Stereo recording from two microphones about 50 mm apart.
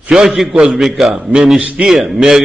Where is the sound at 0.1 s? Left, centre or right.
Centre.